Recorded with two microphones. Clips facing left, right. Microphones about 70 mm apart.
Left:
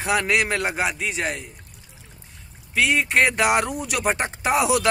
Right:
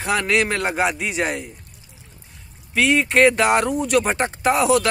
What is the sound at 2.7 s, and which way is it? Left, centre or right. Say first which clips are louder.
Speech: right 3 dB; centre.